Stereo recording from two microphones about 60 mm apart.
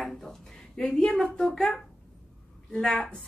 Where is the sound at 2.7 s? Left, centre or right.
Centre.